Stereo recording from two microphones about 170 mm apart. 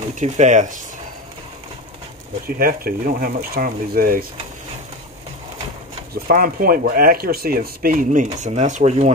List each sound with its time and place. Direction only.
0.2 s speech: 45° right (ahead or behind)
2.4 s speech: 60° right (ahead or behind)
6.2 s speech: 60° right (ahead or behind); by 9.1 s 40° right (ahead or behind)